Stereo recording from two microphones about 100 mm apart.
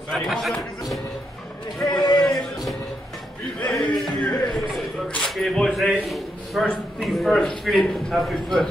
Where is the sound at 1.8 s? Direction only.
45° left (ahead or behind).